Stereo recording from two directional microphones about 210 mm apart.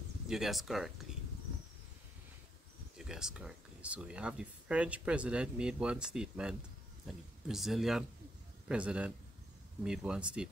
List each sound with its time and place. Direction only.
0.3 s speech: centre (ahead or behind)
3.0 s speech: 5° right (ahead or behind)